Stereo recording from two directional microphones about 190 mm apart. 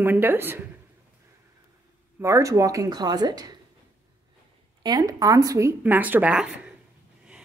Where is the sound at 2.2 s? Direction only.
15° right (ahead or behind).